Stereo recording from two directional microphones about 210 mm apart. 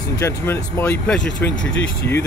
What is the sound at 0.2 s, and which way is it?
Speech, 10° left (ahead or behind).